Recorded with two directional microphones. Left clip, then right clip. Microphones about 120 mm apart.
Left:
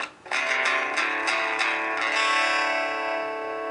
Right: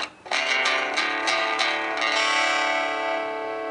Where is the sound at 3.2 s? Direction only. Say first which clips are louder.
Right 1 dB; 10° right (ahead or behind).